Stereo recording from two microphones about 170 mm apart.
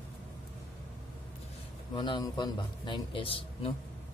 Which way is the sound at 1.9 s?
25° left (ahead or behind).